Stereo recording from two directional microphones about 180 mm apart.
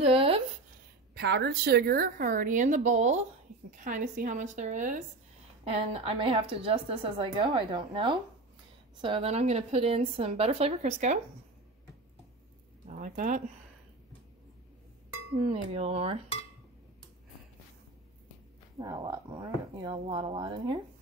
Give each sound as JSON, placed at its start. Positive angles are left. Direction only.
{"t": 0.0, "sound": "a sound", "side_deg": -30}
{"t": 1.1, "sound": "a woman's voice", "side_deg": -65}
{"t": 5.7, "sound": "a woman's voice", "side_deg": -30}
{"t": 12.8, "sound": "speech", "side_deg": -45}
{"t": 15.5, "sound": "a woman's voice", "side_deg": -35}
{"t": 18.8, "sound": "speech", "side_deg": -20}